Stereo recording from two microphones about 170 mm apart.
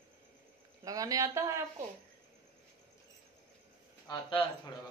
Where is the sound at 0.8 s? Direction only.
20° right (ahead or behind).